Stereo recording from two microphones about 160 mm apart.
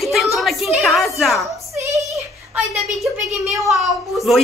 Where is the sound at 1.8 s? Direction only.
20° right (ahead or behind).